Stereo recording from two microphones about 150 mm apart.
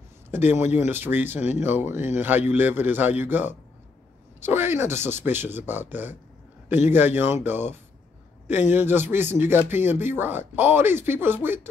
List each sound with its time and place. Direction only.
0.3 s a man's voice: 15° right (ahead or behind)